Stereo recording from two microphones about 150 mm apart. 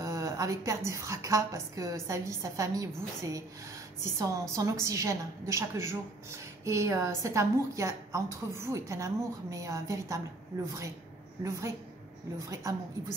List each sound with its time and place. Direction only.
0.0 s a woman's voice: 20° right (ahead or behind)
12.4 s a woman's voice: 20° right (ahead or behind)